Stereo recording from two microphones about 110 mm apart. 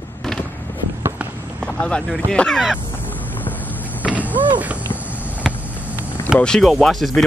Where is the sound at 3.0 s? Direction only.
15° left (ahead or behind).